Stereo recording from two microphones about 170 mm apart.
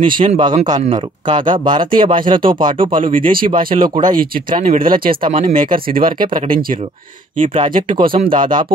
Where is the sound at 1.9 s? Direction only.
55° right (ahead or behind).